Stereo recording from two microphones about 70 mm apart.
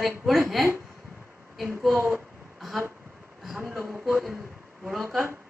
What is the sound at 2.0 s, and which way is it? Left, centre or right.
Speech, right.